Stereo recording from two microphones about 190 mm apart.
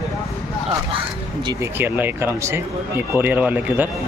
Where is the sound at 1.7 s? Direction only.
10° right (ahead or behind).